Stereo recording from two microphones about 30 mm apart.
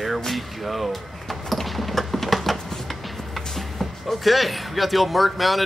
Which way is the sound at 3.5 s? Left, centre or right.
Centre.